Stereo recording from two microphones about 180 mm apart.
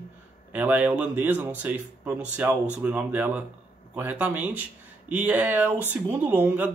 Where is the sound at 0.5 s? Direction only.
10° right (ahead or behind).